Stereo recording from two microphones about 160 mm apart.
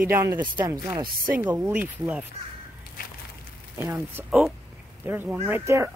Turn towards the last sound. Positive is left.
turn(degrees=-15)  # may be behind; listen again after turning